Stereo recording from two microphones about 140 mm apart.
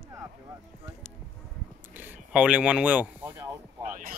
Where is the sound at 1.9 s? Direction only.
15° right (ahead or behind).